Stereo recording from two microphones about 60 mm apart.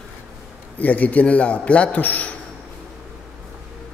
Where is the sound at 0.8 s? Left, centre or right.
Left.